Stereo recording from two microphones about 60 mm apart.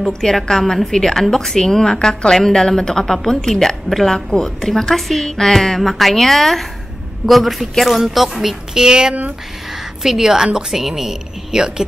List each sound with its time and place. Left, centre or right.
0.0 s a woman's voice: centre